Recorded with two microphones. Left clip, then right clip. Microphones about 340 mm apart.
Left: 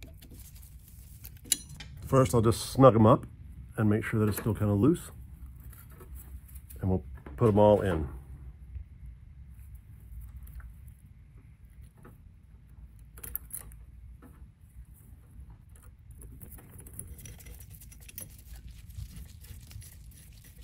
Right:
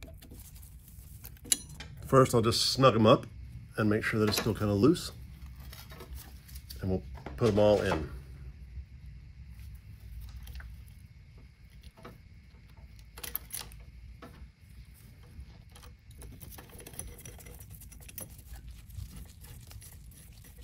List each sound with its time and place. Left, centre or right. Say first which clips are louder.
0.0 s vehicle: right 1 dB; centre
1.2 s a sound: even; centre
2.7 s speech: left 3 dB; left
6.8 s speech: left 1 dB; left
17.2 s patter: right 2 dB; centre